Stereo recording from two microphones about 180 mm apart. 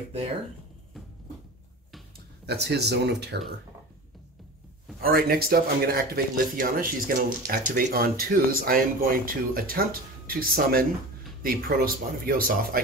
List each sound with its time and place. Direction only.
2.4 s speech: 65° right (ahead or behind)
5.0 s speech: 55° right (ahead or behind)